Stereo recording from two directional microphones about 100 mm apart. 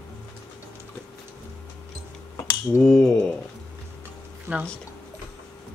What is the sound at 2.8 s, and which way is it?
Speech, 5° left (ahead or behind).